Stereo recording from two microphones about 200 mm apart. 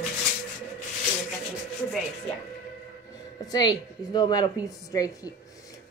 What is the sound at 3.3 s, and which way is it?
A woman's voice, 20° left (ahead or behind).